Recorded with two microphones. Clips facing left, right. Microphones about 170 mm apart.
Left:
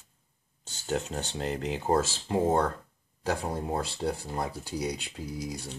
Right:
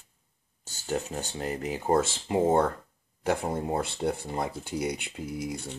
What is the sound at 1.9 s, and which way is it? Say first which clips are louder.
Speech: right 2 dB; 20° right (ahead or behind).